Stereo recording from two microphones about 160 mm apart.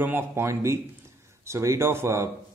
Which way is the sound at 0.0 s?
15° right (ahead or behind).